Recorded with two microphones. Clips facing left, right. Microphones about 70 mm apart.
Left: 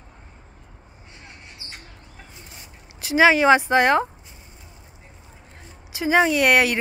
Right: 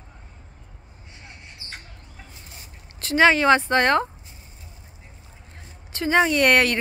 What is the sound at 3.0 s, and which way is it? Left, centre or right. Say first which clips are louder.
A woman's voice: left 1 dB; centre.